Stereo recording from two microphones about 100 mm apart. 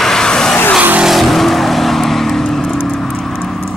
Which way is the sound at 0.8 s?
15° right (ahead or behind).